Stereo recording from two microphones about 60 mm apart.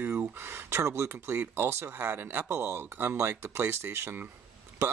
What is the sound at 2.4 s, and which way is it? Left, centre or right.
Speech, right.